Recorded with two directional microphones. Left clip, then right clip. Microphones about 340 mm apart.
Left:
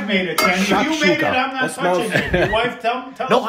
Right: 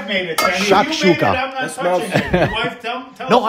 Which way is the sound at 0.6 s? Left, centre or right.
Right.